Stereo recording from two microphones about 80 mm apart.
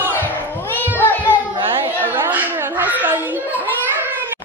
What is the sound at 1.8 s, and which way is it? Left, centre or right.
A child's voice, right.